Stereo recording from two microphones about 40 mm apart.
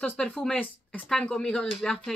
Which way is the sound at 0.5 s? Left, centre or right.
Left.